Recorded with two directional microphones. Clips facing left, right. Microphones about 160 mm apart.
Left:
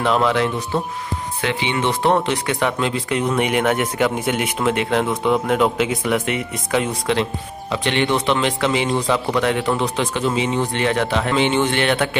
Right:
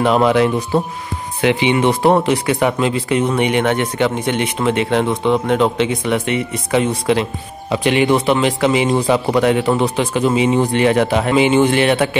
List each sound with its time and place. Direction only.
0.0 s speech: 10° right (ahead or behind)